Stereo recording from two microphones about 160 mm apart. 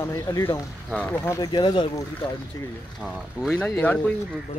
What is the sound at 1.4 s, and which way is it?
Speech, 30° left (ahead or behind).